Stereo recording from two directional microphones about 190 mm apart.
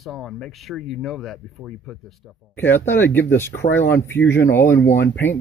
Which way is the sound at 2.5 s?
10° left (ahead or behind).